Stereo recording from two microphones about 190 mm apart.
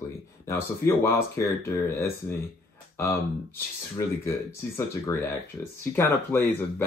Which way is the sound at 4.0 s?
15° left (ahead or behind).